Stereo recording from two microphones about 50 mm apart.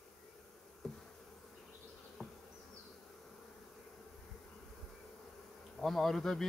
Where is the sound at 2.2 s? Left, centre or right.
Centre.